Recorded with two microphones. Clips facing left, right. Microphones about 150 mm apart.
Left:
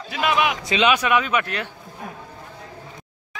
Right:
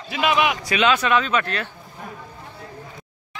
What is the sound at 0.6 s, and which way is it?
Speech, 20° left (ahead or behind).